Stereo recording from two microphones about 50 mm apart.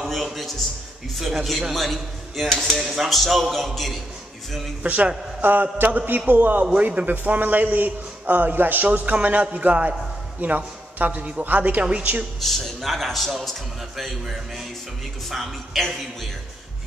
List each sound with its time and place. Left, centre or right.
0.0 s a man's voice: centre
4.8 s a man's voice: right
12.4 s a man's voice: centre